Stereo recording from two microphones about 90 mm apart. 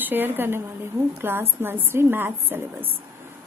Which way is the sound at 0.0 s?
20° right (ahead or behind).